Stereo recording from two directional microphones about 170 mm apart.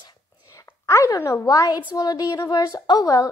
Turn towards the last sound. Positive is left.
turn(degrees=25)  # may be behind; listen again after turning